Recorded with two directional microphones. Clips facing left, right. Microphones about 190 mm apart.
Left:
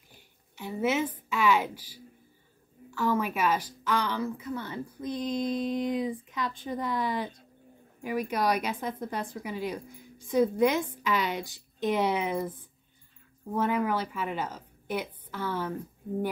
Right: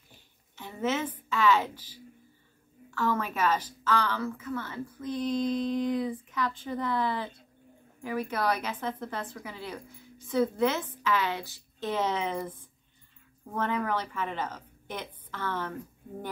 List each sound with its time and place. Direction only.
0.6 s a woman's voice: 10° left (ahead or behind)